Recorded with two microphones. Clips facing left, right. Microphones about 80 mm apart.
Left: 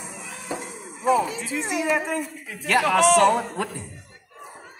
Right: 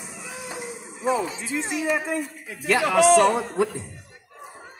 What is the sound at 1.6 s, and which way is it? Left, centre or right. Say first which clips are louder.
Speech: left 1 dB; left.